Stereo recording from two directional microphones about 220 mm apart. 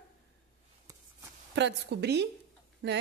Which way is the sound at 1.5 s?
50° right (ahead or behind).